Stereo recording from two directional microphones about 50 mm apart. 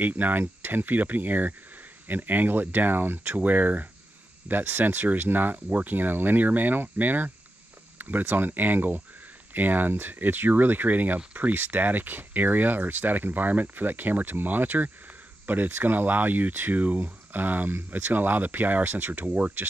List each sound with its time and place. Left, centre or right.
0.0 s speech: right